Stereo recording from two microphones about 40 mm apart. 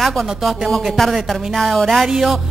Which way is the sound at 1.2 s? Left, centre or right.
Centre.